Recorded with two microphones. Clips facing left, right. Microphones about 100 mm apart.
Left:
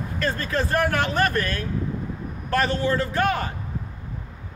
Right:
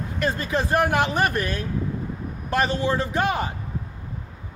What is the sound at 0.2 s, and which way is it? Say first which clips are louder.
A man's voice: right 1 dB; 15° right (ahead or behind).